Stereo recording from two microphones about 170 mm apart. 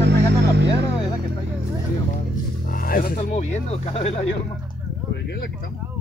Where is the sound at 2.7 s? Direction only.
55° left (ahead or behind).